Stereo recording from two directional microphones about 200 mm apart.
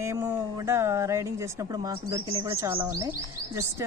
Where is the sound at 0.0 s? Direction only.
15° right (ahead or behind).